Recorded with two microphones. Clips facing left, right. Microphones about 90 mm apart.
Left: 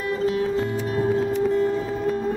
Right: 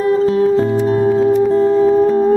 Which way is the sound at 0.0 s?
35° right (ahead or behind).